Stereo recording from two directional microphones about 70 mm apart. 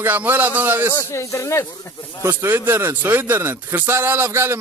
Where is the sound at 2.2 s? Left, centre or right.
Right.